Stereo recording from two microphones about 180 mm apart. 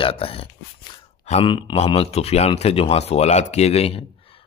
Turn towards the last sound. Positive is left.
turn(degrees=35)  # may be behind; listen again after turning